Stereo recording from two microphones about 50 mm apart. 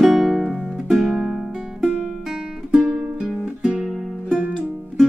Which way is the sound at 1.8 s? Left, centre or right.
Centre.